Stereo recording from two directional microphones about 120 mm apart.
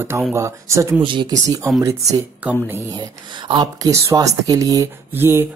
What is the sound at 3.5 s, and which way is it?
Speech, 30° right (ahead or behind).